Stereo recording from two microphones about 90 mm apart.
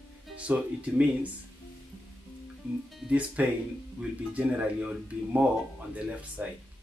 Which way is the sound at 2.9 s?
10° right (ahead or behind).